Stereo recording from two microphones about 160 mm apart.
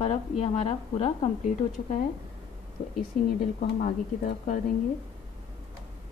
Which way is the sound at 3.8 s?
50° left (ahead or behind).